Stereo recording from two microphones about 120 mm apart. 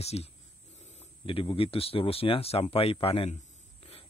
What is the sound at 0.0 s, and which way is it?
Speech, 60° left (ahead or behind).